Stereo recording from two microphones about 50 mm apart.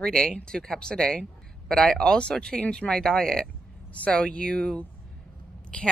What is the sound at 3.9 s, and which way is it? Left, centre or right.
Speech, left.